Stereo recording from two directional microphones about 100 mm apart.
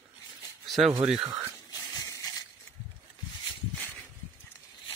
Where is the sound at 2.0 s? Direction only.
35° left (ahead or behind).